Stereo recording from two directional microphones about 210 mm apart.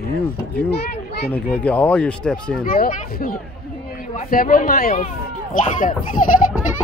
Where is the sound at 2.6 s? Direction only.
45° left (ahead or behind).